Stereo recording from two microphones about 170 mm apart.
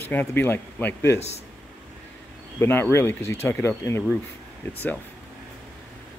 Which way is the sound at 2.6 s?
15° left (ahead or behind).